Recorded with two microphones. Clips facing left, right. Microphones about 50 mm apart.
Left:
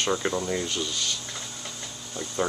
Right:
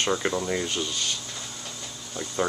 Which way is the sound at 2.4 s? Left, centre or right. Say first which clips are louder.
Right 1 dB; centre.